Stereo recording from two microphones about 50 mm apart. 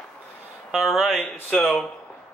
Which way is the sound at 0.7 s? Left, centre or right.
Centre.